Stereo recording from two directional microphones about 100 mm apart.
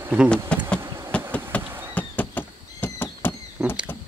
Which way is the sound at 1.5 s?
15° left (ahead or behind).